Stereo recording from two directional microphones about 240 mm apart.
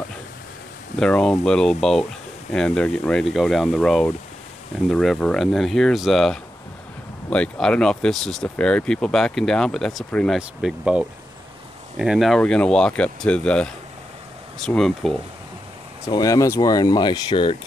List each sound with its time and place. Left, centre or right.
0.9 s speech: centre
16.1 s speech: centre